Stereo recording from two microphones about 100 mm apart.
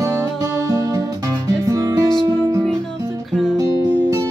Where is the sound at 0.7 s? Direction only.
35° right (ahead or behind).